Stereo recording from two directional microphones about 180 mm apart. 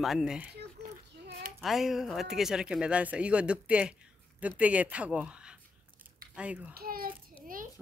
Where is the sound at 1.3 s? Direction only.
55° right (ahead or behind).